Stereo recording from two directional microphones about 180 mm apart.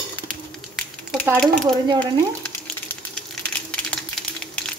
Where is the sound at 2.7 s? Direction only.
5° left (ahead or behind).